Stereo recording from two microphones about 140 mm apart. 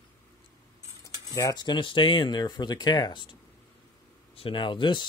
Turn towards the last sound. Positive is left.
turn(degrees=35)  # may be behind; listen again after turning